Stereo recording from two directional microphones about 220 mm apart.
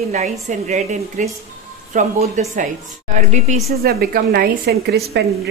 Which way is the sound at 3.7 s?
45° right (ahead or behind).